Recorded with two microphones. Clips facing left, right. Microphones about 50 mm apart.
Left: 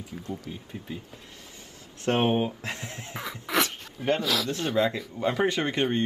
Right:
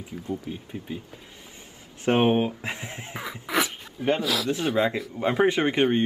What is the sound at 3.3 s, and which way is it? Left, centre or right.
Speech, centre.